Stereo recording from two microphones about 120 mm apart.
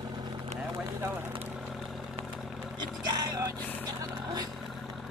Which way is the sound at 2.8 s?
35° right (ahead or behind).